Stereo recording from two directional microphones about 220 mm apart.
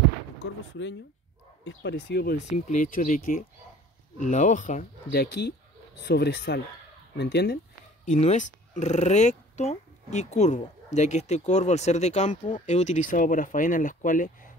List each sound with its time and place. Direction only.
1.6 s speech: 55° left (ahead or behind)
2.3 s speech: 35° left (ahead or behind); by 7.5 s 50° left (ahead or behind)
8.0 s speech: 30° left (ahead or behind)